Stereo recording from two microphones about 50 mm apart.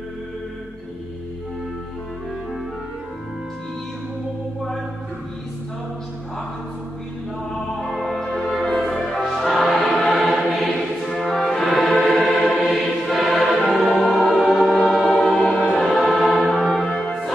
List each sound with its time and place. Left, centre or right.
7.8 s music: centre
10.1 s choir: centre
11.3 s music: centre
15.2 s music: centre
15.7 s choir: centre
16.1 s music: centre